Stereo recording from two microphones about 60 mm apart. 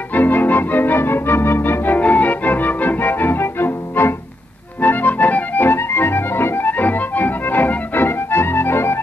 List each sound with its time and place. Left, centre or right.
0.1 s organ: left
4.8 s music: left